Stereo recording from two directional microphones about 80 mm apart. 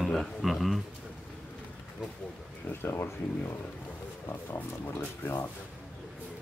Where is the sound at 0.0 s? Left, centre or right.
Centre.